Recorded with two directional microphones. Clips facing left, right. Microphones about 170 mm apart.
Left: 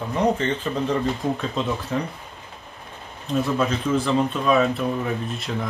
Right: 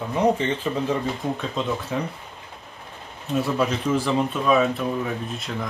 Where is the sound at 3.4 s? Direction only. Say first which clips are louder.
Even; 5° right (ahead or behind).